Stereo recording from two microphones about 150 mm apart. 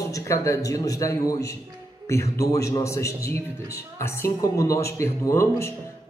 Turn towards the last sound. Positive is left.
turn(degrees=20)  # may be behind; listen again after turning